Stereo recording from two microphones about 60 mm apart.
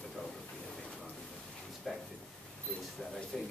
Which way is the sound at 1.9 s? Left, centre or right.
Centre.